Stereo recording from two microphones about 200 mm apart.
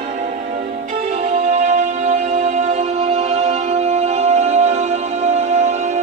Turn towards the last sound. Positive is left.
turn(degrees=-35)  # may be behind; listen again after turning